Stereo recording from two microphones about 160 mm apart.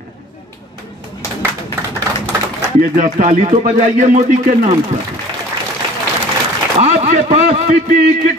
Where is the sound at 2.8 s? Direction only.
55° right (ahead or behind).